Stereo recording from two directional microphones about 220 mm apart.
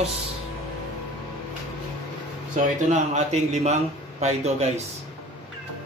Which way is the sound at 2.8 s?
30° right (ahead or behind).